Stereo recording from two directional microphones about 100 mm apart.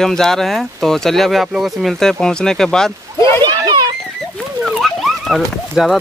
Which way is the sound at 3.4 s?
45° right (ahead or behind).